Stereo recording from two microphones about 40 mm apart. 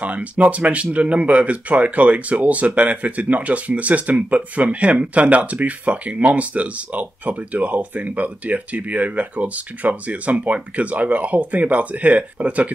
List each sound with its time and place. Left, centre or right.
0.0 s speech: right